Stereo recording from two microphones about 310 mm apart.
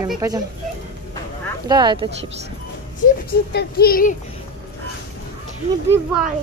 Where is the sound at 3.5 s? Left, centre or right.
Left.